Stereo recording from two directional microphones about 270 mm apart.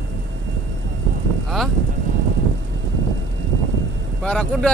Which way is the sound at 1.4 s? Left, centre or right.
Centre.